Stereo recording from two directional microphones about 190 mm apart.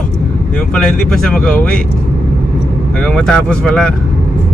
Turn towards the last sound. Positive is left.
turn(degrees=5)  # may be behind; listen again after turning